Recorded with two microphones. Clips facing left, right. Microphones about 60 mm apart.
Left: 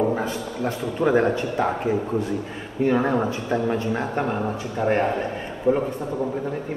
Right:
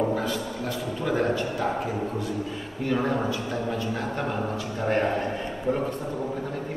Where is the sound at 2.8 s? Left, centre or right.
Left.